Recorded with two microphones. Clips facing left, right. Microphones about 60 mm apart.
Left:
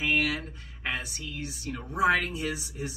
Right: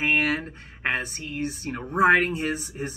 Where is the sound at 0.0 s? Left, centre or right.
Right.